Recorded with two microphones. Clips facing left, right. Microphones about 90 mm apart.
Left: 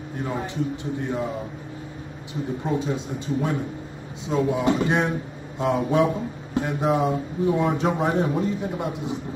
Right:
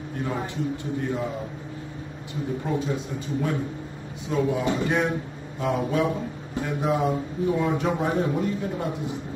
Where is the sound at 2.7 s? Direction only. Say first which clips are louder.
Left 3 dB; 20° left (ahead or behind).